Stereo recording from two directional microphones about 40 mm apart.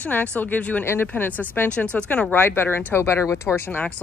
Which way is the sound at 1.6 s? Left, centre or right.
Left.